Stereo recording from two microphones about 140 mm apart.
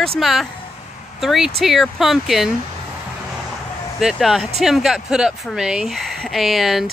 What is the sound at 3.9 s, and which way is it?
Speech, centre (ahead or behind).